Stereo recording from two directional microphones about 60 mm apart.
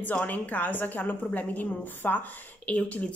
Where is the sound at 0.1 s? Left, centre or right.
Left.